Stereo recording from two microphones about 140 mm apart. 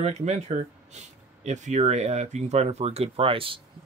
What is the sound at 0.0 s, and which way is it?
Speech, 55° right (ahead or behind).